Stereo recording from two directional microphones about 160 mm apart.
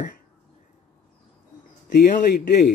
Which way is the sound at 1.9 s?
80° left.